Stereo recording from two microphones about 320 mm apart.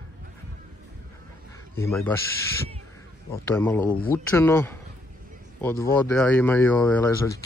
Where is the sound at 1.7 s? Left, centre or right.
Centre.